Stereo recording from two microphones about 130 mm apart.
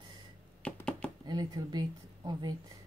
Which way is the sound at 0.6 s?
10° left (ahead or behind).